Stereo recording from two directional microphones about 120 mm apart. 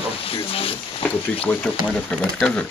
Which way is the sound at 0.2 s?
50° left (ahead or behind).